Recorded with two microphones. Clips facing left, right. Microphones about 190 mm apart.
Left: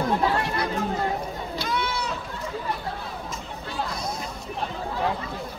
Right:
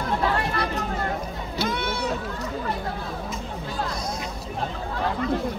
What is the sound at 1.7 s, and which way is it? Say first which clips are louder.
Run: even; 50° right (ahead or behind).